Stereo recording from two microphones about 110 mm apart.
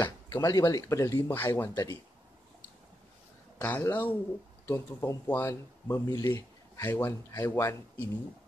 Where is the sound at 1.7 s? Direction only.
35° left (ahead or behind).